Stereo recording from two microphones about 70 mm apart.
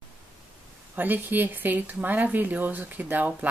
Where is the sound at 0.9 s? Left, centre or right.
Right.